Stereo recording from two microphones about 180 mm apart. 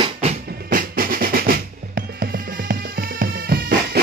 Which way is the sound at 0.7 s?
50° right (ahead or behind).